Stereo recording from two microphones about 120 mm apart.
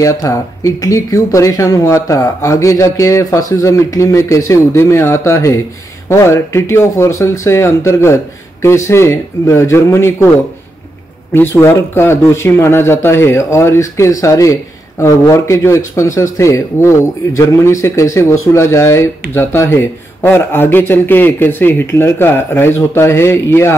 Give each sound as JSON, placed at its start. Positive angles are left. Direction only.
{"t": 0.0, "sound": "speech", "side_deg": 25}
{"t": 11.3, "sound": "speech", "side_deg": 20}